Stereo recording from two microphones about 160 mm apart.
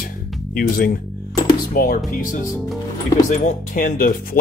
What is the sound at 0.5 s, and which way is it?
Speech, 65° left (ahead or behind).